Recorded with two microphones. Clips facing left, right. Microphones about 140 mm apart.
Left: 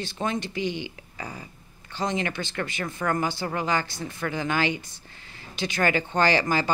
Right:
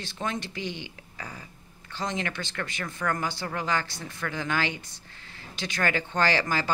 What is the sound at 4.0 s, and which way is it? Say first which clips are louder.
Speech: left 4 dB; 20° left (ahead or behind).